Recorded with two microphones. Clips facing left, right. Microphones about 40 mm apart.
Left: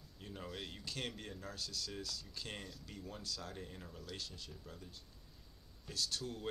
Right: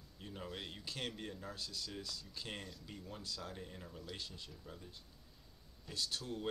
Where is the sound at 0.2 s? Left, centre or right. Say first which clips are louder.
Even; centre.